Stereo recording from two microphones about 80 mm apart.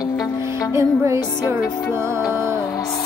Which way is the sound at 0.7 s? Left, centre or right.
Right.